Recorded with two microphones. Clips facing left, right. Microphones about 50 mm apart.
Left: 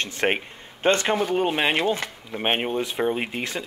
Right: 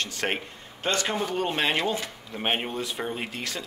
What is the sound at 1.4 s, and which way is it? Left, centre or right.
Speech, centre.